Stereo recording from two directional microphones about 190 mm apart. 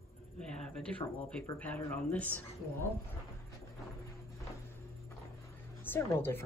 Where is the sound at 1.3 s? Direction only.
5° left (ahead or behind).